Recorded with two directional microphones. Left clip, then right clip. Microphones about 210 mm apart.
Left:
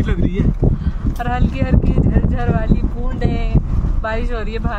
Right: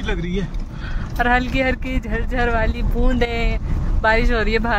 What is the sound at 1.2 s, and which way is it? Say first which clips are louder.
Speech: right 5 dB; 15° right (ahead or behind).